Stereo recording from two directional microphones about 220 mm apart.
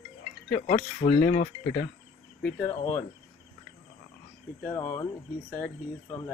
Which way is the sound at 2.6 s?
15° left (ahead or behind).